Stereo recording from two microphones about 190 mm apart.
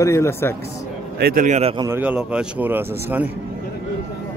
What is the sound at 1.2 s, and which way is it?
Speech, 50° right (ahead or behind).